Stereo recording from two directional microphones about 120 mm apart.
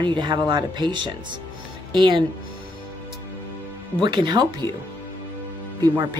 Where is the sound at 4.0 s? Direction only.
40° right (ahead or behind).